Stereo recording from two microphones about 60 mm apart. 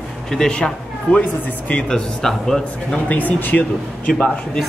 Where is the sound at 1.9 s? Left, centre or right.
Centre.